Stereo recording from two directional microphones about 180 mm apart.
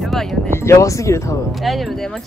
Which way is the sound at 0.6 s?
15° left (ahead or behind).